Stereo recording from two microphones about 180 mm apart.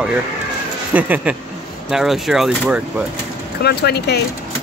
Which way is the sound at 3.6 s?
65° left (ahead or behind).